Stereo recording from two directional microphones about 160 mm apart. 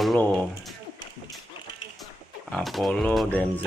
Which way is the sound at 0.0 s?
5° left (ahead or behind).